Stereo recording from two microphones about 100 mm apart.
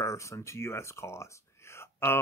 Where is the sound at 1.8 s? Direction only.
25° left (ahead or behind).